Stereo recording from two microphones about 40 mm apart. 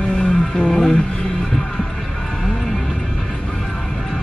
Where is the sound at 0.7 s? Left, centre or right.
Centre.